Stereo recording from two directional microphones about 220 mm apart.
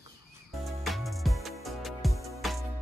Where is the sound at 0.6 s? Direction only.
Centre (ahead or behind).